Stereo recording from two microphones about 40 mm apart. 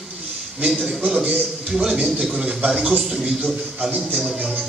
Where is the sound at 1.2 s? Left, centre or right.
Right.